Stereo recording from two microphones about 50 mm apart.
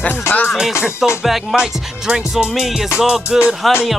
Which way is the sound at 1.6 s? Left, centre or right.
Centre.